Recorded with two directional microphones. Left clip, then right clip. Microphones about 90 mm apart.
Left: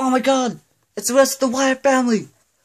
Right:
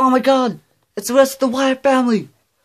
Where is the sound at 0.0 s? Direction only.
35° right (ahead or behind).